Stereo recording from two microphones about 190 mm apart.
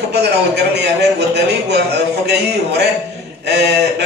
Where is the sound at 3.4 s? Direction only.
60° right (ahead or behind).